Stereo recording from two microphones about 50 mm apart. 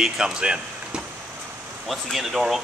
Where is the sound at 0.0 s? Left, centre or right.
Centre.